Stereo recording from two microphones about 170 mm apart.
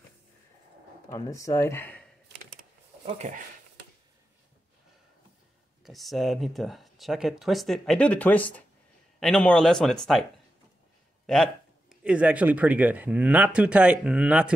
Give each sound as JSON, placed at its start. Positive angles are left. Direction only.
{"t": 1.1, "sound": "speech", "side_deg": 20}
{"t": 3.1, "sound": "speech", "side_deg": -45}
{"t": 5.9, "sound": "speech", "side_deg": 0}
{"t": 11.2, "sound": "speech", "side_deg": 5}